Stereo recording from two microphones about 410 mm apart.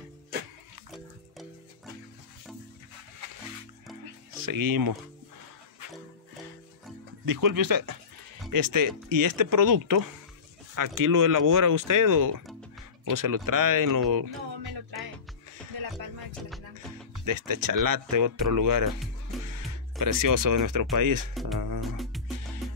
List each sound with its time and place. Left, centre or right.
4.5 s speech: right
7.2 s speech: right
17.1 s speech: right
19.4 s music: right
20.9 s speech: right
21.5 s music: right
21.8 s music: centre